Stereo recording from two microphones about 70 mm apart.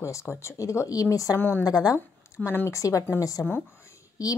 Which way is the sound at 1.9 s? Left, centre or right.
Left.